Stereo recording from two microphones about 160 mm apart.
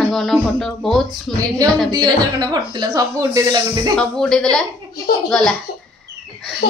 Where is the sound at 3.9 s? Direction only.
5° left (ahead or behind).